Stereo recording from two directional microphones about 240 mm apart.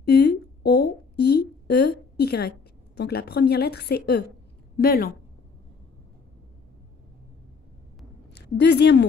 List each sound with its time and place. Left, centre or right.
0.0 s a sound: left
3.0 s a woman's voice: left
8.5 s speech: left